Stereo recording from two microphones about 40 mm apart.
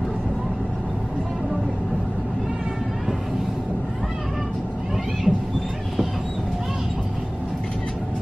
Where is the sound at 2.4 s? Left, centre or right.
Centre.